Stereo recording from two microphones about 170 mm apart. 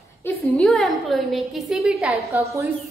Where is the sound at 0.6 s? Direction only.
Centre (ahead or behind).